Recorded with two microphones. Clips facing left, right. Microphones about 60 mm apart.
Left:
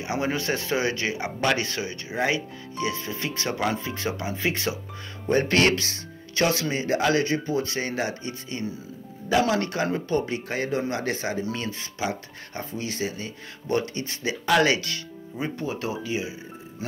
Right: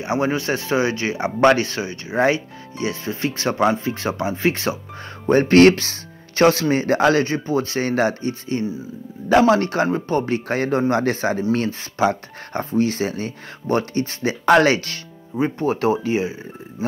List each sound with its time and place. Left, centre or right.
0.0 s speech: right